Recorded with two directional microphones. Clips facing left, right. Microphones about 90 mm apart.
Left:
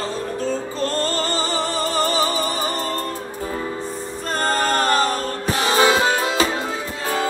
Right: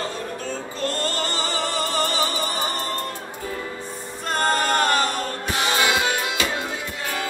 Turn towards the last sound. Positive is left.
turn(degrees=35)  # may be behind; listen again after turning